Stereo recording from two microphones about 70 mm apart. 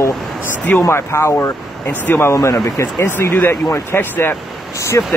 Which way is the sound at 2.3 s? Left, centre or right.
Left.